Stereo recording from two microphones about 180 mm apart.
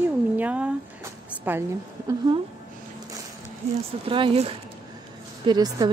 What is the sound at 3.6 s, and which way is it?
Speech, 35° right (ahead or behind).